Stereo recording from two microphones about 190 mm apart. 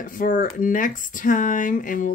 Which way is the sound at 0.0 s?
45° left (ahead or behind).